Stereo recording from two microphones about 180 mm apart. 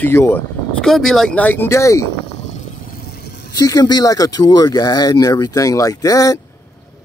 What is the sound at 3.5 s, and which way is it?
Speech, 20° left (ahead or behind).